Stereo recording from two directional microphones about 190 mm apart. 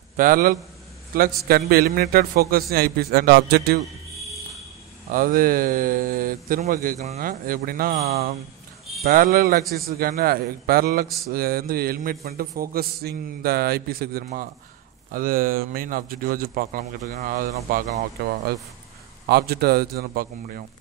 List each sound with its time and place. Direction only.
0.2 s a man's voice: 50° right (ahead or behind)
5.1 s a man's voice: 50° right (ahead or behind)
9.0 s a man's voice: 50° right (ahead or behind)